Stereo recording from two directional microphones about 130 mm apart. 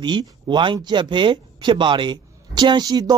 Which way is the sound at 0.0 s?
35° right (ahead or behind).